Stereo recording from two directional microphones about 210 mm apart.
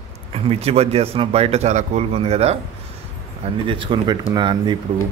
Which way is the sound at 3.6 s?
25° right (ahead or behind).